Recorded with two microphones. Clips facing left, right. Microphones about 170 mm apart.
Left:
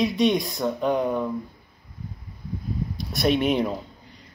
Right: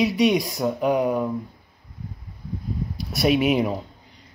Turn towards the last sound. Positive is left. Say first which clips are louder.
# right 2 dB
turn(degrees=-5)  # may be behind; listen again after turning